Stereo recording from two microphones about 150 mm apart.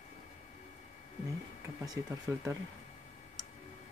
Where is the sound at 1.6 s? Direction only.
20° right (ahead or behind).